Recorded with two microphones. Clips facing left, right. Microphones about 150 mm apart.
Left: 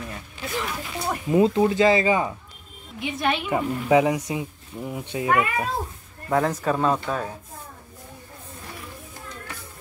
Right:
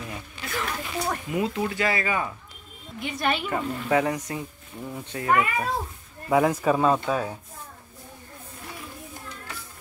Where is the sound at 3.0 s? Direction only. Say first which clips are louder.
Left 2 dB; centre (ahead or behind).